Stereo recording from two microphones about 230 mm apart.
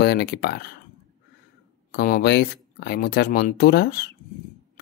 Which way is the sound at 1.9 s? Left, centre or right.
Left.